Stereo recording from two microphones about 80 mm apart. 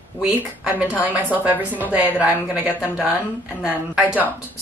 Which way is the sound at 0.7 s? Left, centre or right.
Centre.